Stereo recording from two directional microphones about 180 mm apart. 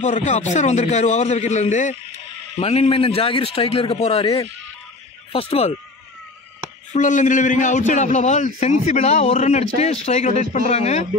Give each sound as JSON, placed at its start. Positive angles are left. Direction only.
{"t": 0.0, "sound": "a man's voice", "side_deg": 40}
{"t": 5.3, "sound": "a man's voice", "side_deg": 35}
{"t": 6.9, "sound": "a man's voice", "side_deg": 45}